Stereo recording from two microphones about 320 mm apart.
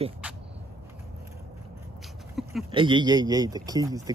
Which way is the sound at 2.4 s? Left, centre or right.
Centre.